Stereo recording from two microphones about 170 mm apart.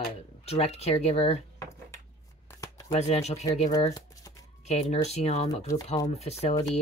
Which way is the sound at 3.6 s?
20° left (ahead or behind).